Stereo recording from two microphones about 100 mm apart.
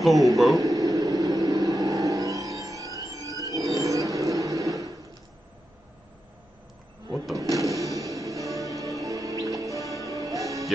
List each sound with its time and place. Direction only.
0.0 s a man's voice: centre (ahead or behind)
0.6 s vehicle: 35° right (ahead or behind)
7.3 s music: 35° right (ahead or behind)